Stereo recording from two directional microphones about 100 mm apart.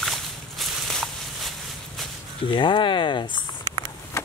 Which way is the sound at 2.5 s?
55° left (ahead or behind).